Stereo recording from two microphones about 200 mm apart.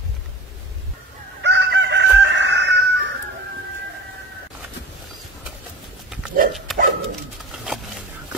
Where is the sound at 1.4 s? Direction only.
60° right (ahead or behind).